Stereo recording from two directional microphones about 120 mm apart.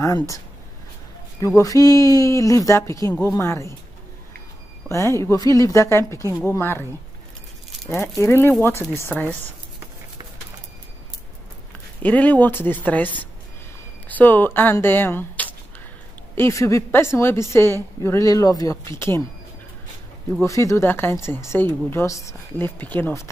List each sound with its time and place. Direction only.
1.6 s speech: 30° left (ahead or behind)
4.8 s speech: 25° left (ahead or behind)
7.9 s a woman's voice: 20° left (ahead or behind)
12.0 s a woman's voice: 15° left (ahead or behind)
20.4 s speech: 25° left (ahead or behind)
22.8 s a woman's voice: 15° left (ahead or behind)